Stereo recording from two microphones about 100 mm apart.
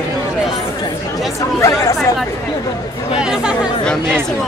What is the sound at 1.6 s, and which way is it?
Chatter, 35° left (ahead or behind).